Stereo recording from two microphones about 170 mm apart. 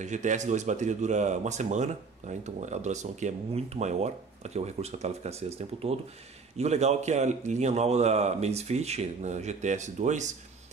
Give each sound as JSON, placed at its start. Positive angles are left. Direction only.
{"t": 0.0, "sound": "a man's voice", "side_deg": -45}